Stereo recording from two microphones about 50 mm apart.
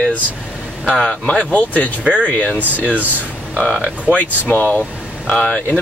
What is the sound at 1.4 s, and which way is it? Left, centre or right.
Speech, left.